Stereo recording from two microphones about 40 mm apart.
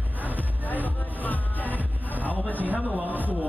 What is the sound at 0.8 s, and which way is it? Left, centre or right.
Music, left.